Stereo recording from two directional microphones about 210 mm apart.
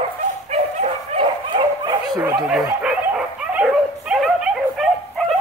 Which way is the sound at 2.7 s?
5° right (ahead or behind).